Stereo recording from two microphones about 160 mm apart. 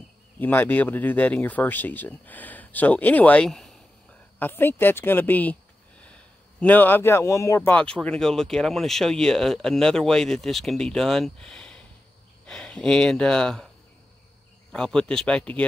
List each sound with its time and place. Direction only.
0.4 s speech: 10° left (ahead or behind)
4.4 s speech: 15° left (ahead or behind)
7.7 s speech: 5° left (ahead or behind)
14.7 s speech: 5° left (ahead or behind)